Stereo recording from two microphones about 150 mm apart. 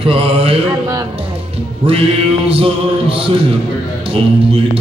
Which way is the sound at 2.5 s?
40° right (ahead or behind).